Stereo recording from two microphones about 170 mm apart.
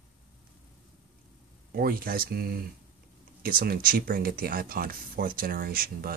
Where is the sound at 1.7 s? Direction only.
60° right (ahead or behind).